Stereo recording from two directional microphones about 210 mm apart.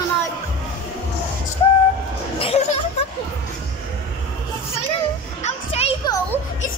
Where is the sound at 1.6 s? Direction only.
20° left (ahead or behind).